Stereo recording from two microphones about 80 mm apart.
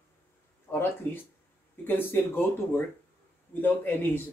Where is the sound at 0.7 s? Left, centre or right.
Left.